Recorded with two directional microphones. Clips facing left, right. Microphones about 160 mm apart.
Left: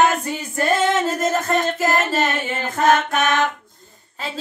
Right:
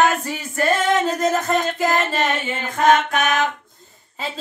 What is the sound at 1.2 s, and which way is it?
Music, centre (ahead or behind).